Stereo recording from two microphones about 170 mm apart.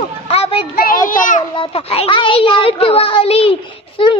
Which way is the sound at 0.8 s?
55° left (ahead or behind).